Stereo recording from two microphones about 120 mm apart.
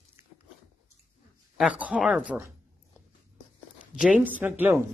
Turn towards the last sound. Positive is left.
turn(degrees=-15)  # may be behind; listen again after turning